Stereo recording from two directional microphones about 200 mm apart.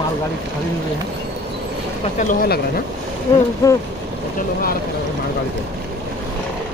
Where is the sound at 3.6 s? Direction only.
15° left (ahead or behind).